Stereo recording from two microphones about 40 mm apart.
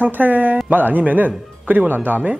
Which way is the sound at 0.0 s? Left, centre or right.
Right.